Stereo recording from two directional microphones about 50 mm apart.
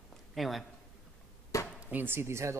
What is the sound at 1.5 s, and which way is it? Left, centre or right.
Chop, left.